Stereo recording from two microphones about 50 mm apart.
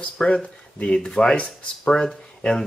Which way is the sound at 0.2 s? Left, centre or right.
Left.